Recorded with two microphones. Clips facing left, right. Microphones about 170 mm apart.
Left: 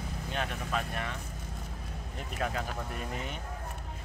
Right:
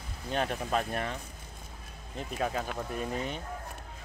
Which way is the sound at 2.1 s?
20° right (ahead or behind).